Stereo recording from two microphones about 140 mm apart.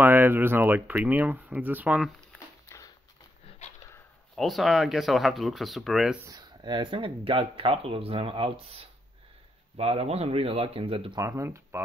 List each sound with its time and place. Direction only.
0.0 s speech: 15° right (ahead or behind)
2.7 s a sound: 20° left (ahead or behind)
3.4 s dog: 55° left (ahead or behind)
4.4 s speech: centre (ahead or behind)
6.2 s speech: 30° right (ahead or behind)
11.1 s speech: 20° right (ahead or behind)